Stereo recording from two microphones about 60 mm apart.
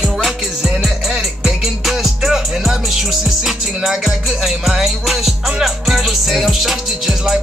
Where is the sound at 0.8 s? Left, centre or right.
Centre.